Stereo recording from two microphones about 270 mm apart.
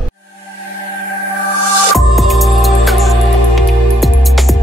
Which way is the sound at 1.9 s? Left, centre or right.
Centre.